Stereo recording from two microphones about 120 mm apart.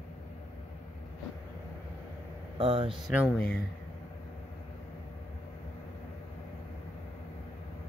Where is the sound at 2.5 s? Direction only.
45° right (ahead or behind).